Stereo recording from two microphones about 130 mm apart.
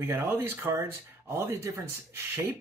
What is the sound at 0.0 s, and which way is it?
Speech, 20° right (ahead or behind).